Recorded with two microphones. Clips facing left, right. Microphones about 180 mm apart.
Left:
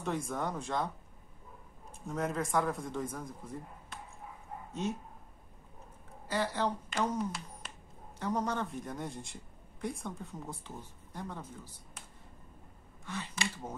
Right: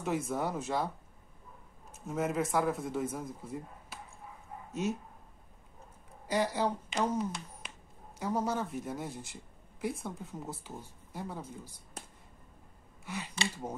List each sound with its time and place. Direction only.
0.0 s speech: 5° right (ahead or behind)
3.9 s dog: 5° right (ahead or behind)
6.2 s speech: 15° right (ahead or behind)
13.0 s speech: 10° right (ahead or behind)
13.3 s speech: 25° right (ahead or behind)